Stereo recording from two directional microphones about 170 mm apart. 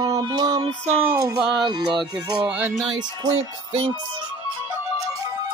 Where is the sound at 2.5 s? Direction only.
5° right (ahead or behind).